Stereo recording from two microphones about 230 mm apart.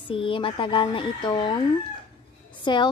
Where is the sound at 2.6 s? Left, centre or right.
Centre.